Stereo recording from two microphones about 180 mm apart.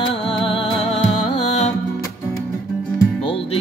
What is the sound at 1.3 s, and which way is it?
Music, 35° left (ahead or behind).